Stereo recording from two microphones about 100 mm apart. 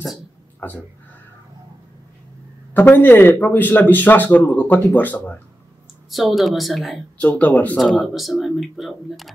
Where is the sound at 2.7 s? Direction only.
20° left (ahead or behind).